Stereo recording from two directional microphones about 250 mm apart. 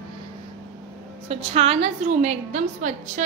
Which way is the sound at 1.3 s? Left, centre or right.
Right.